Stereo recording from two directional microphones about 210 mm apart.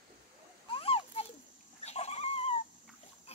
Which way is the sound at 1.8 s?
30° left (ahead or behind).